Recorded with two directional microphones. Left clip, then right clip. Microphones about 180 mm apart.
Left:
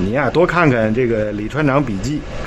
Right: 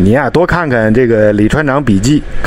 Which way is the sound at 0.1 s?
35° right (ahead or behind).